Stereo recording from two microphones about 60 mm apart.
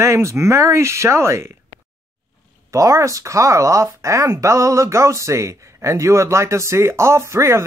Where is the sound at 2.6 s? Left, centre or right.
Right.